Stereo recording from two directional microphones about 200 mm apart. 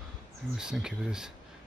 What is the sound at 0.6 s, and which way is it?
Speech, 5° right (ahead or behind).